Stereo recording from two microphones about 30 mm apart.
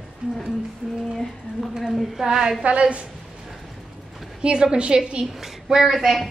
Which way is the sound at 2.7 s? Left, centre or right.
Right.